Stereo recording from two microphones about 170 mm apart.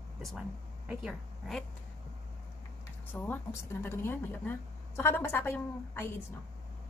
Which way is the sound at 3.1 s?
10° left (ahead or behind).